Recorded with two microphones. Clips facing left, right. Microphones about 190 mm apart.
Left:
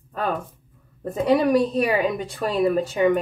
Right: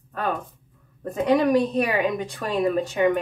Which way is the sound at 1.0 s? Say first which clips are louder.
Left 1 dB; 10° left (ahead or behind).